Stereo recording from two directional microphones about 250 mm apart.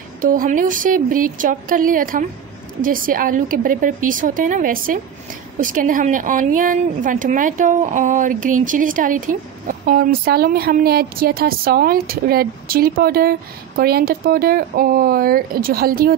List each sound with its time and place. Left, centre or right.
0.2 s speech: right